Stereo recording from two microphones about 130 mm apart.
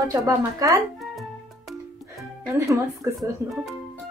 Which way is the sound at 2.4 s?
25° right (ahead or behind).